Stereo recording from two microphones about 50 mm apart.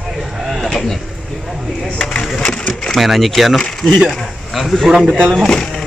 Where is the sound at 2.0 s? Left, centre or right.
Centre.